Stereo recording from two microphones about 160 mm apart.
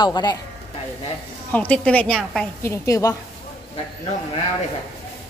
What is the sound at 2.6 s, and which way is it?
Speech, 20° left (ahead or behind).